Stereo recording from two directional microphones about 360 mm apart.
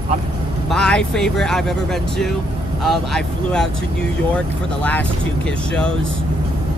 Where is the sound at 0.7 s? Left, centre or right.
Centre.